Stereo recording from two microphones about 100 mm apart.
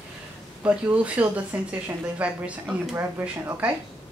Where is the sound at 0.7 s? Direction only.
10° right (ahead or behind).